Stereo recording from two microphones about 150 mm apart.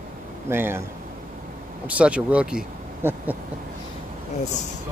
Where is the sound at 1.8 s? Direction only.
10° right (ahead or behind).